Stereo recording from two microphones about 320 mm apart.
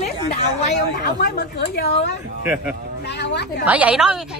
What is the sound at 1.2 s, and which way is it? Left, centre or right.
Speech, left.